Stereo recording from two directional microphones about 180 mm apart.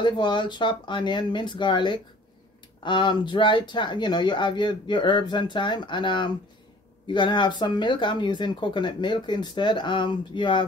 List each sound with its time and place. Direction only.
0.0 s speech: 25° left (ahead or behind)